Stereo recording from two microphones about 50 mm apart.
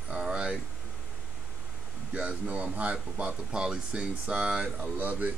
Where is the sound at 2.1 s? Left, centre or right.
Right.